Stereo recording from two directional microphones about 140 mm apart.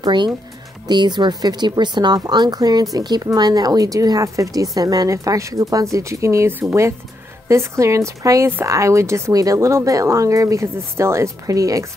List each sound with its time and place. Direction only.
0.0 s speech: 35° right (ahead or behind)